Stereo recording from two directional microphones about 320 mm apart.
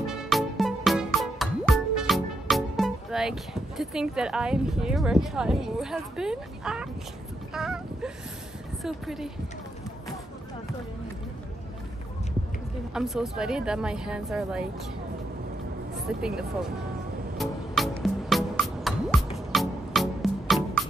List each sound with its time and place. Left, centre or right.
0.0 s music: centre
7.5 s a woman's voice: centre
12.9 s a woman's voice: centre
16.1 s a woman's voice: centre
17.4 s music: centre